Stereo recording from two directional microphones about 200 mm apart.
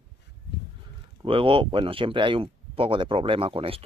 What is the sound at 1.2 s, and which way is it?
Speech, 25° right (ahead or behind).